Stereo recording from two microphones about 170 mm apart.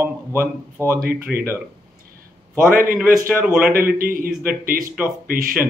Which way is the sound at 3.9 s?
55° right (ahead or behind).